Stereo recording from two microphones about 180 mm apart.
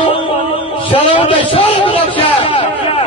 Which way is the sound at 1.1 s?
30° left (ahead or behind).